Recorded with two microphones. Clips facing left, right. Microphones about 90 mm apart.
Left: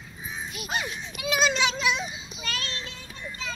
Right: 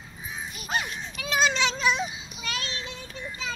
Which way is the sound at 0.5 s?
10° left (ahead or behind).